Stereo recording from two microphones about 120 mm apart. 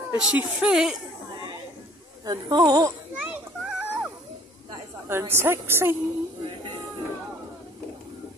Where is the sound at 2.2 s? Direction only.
35° right (ahead or behind).